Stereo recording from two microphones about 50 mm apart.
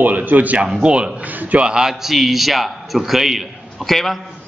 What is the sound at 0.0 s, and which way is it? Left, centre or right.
Speech, right.